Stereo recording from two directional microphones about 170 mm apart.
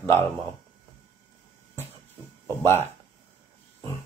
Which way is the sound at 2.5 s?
15° left (ahead or behind).